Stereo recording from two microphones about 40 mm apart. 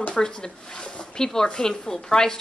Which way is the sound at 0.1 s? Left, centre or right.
Centre.